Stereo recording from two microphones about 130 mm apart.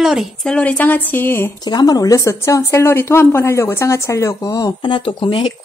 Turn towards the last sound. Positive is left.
turn(degrees=40)  # may be behind; listen again after turning